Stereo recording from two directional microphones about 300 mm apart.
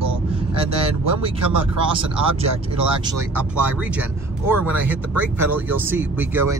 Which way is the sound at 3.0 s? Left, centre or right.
Centre.